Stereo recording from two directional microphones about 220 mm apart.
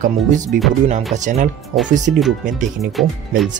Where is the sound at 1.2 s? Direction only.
35° right (ahead or behind).